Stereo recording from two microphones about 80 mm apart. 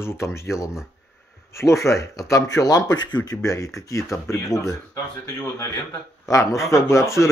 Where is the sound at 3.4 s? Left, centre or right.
Left.